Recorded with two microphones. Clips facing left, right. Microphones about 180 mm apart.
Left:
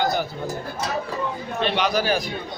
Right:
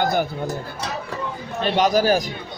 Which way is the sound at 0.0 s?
50° right (ahead or behind).